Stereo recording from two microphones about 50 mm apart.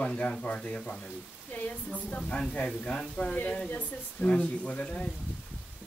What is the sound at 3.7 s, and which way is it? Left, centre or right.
Speech, left.